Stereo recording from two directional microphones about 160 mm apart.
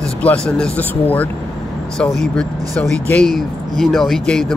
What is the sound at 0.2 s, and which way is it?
Speech, 5° left (ahead or behind).